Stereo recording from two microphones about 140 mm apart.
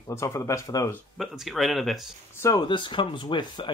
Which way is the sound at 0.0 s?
20° left (ahead or behind).